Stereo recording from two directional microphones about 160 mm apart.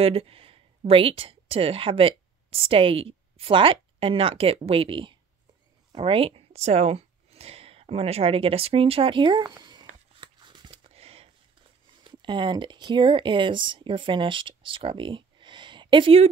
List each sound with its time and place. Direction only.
0.0 s speech: 40° right (ahead or behind)
10.2 s a sound: 30° right (ahead or behind)
12.0 s speech: 30° right (ahead or behind)